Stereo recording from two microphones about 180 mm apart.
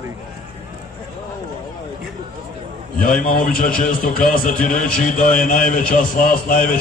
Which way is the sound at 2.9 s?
50° left (ahead or behind).